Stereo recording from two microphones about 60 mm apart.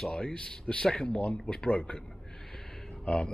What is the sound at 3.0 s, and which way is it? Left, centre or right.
Speech, centre.